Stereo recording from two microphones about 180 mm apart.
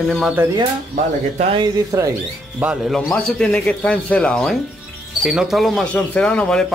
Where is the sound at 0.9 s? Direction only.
40° right (ahead or behind).